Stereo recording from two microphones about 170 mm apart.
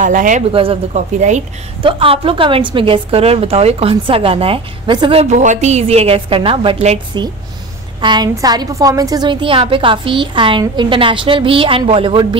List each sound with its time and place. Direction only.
0.0 s speech: 50° right (ahead or behind)
0.5 s a woman's voice: 30° right (ahead or behind)
1.8 s a woman's voice: 30° right (ahead or behind)
5.2 s a woman's voice: 45° right (ahead or behind)
8.0 s a woman's voice: 25° right (ahead or behind)